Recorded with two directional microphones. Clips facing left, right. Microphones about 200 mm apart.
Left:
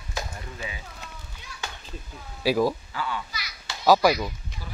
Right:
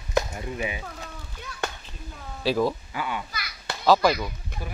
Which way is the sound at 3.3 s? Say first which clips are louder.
Right 4 dB; 55° right (ahead or behind).